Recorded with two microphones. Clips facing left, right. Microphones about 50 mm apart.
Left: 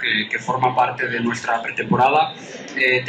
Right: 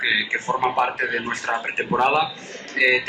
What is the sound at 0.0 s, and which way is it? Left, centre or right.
Speech, centre.